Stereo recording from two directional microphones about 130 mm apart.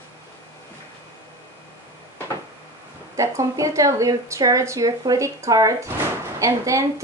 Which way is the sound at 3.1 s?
25° right (ahead or behind).